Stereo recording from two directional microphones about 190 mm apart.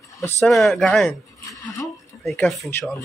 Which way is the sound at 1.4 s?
15° left (ahead or behind).